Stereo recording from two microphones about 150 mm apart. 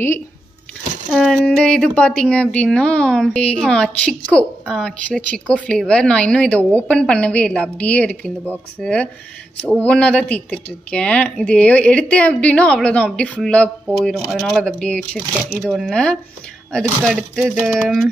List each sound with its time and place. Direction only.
1.1 s speech: centre (ahead or behind)